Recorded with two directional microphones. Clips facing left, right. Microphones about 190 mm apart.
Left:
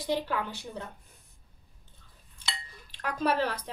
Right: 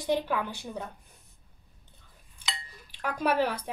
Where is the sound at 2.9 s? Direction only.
10° right (ahead or behind).